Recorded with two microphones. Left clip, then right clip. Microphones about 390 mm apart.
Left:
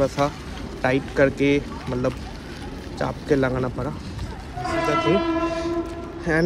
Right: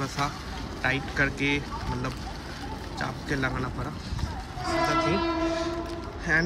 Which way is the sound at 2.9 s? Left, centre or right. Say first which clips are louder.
Left 9 dB; centre.